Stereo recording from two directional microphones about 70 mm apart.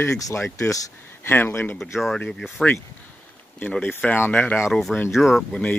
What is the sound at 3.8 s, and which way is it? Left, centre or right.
Speech, left.